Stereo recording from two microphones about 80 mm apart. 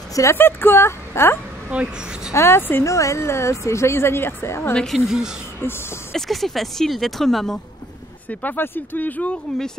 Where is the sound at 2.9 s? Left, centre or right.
Left.